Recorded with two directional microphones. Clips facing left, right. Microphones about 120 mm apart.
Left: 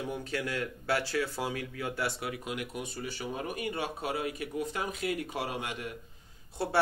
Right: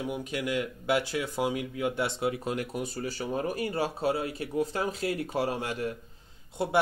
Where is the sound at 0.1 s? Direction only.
15° right (ahead or behind); by 5.9 s 35° right (ahead or behind).